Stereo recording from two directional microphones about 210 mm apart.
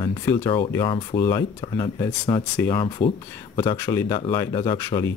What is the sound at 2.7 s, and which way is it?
Speech, 20° left (ahead or behind).